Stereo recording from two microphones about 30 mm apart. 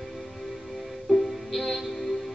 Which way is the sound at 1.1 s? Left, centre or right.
Centre.